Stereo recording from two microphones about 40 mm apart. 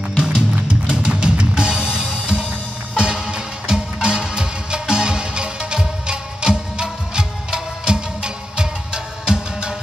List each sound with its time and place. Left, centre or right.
0.2 s music: right